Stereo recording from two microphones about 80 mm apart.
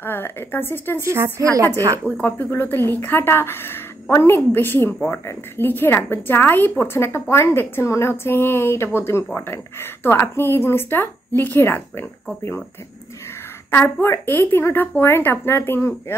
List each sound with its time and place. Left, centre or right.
0.0 s speech: left
1.0 s a woman's voice: right
2.0 s a woman's voice: left
13.7 s speech: left